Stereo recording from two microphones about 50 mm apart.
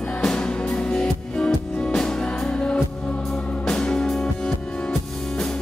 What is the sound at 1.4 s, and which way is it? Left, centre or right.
Music, centre.